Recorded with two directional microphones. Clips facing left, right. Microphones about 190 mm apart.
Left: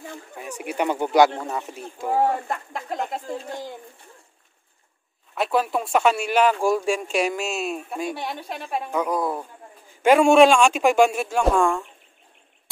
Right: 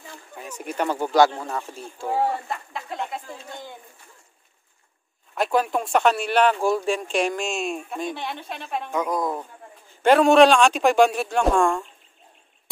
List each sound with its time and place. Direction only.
0.5 s speech: 15° left (ahead or behind)
2.1 s speech: 45° left (ahead or behind)
5.3 s speech: centre (ahead or behind)